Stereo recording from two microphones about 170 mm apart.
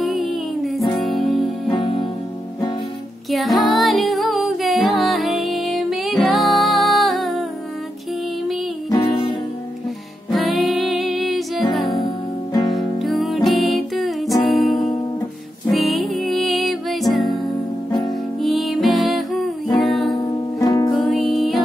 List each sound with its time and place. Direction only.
0.0 s music: centre (ahead or behind)
1.7 s music: 30° left (ahead or behind)
3.3 s music: centre (ahead or behind)
8.9 s music: 20° left (ahead or behind)
10.3 s music: centre (ahead or behind)
18.4 s music: centre (ahead or behind)
20.5 s music: 20° left (ahead or behind)
20.9 s music: centre (ahead or behind)